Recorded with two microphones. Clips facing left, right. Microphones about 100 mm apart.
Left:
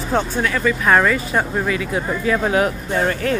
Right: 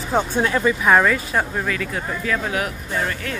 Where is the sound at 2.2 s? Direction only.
30° left (ahead or behind).